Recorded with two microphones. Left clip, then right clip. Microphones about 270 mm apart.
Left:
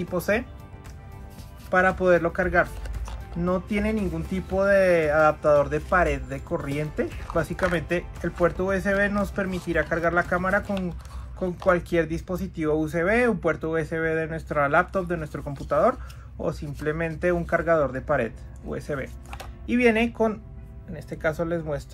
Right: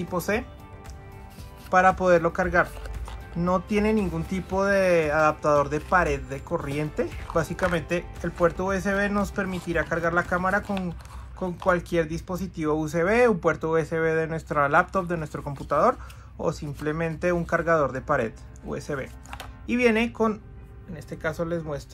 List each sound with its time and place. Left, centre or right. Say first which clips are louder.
0.1 s speech: left 2 dB; centre
1.7 s speech: right 1 dB; centre
5.6 s speech: left 1 dB; centre